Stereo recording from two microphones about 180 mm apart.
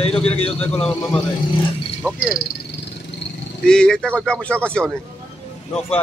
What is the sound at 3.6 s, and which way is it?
Speech, 5° left (ahead or behind).